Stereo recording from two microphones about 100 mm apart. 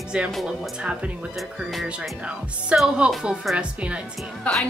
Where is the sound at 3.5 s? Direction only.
10° right (ahead or behind).